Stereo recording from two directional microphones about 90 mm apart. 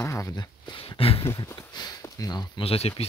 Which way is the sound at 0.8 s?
90° left.